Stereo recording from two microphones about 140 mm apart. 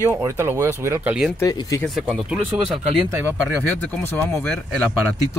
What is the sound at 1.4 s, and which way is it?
Speech, 25° left (ahead or behind).